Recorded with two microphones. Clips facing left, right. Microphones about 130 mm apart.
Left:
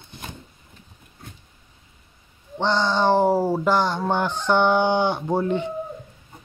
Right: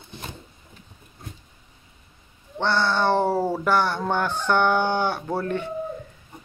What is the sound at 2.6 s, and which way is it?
Speech, 15° left (ahead or behind).